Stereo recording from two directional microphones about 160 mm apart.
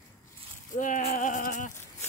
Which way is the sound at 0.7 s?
55° left (ahead or behind).